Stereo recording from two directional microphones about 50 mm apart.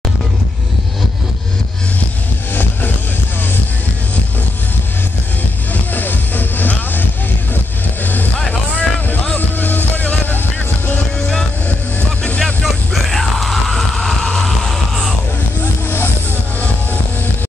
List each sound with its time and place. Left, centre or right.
2.5 s music: left
5.9 s music: left
8.7 s vehicle: left
11.1 s vehicle: left
12.6 s music: centre